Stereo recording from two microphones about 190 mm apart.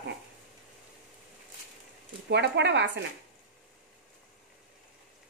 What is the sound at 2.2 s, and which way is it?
Speech, 65° right (ahead or behind).